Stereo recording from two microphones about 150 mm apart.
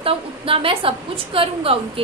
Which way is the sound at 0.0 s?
40° right (ahead or behind).